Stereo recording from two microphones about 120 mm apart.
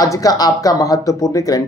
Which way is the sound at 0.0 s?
30° left (ahead or behind).